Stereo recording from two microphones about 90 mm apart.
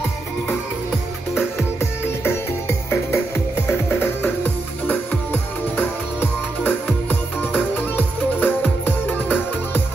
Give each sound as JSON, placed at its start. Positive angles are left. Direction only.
{"t": 1.6, "sound": "music", "side_deg": 25}